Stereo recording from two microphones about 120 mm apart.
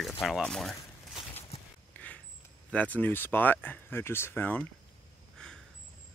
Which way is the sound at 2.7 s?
10° left (ahead or behind).